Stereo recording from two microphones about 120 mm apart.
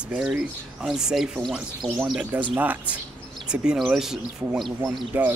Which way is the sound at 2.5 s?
15° right (ahead or behind).